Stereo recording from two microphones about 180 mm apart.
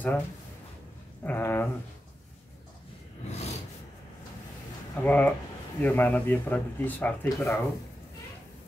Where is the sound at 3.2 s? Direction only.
35° left (ahead or behind).